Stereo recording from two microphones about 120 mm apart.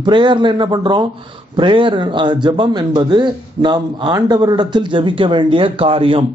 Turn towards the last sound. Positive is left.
turn(degrees=-50)  # may be behind; listen again after turning